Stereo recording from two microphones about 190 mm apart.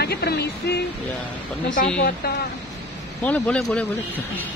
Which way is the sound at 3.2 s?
10° left (ahead or behind).